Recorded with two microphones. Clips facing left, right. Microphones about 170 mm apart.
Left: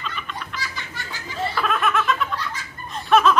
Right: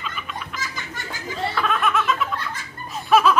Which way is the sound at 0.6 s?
45° right (ahead or behind).